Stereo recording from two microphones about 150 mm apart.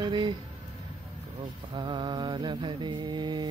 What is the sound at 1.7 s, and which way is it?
Mantra, 30° right (ahead or behind).